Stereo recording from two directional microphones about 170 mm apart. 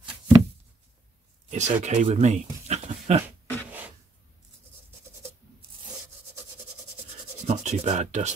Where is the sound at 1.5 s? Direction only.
45° right (ahead or behind).